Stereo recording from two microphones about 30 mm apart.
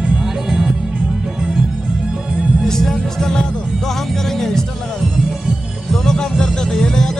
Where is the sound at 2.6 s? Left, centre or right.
Centre.